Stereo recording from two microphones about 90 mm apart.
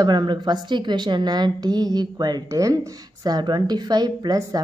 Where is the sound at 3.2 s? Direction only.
50° right (ahead or behind).